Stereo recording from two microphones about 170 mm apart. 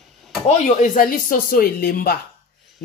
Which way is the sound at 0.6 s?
50° left (ahead or behind).